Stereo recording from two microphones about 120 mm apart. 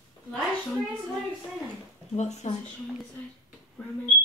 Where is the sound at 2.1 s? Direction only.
70° left (ahead or behind).